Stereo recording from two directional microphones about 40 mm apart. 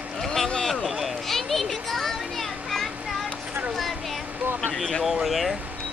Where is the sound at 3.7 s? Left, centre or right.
Centre.